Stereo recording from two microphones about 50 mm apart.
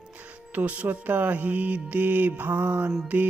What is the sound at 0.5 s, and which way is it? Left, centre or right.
Speech, right.